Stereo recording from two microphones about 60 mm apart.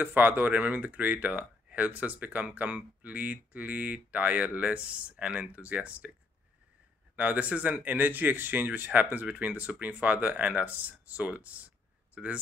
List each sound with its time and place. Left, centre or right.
0.0 s speech: right
7.2 s speech: right